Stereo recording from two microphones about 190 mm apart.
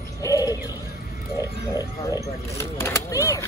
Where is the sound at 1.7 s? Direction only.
15° left (ahead or behind).